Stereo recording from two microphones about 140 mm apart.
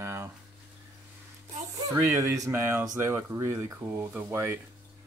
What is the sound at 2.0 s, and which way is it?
Speech, 20° right (ahead or behind).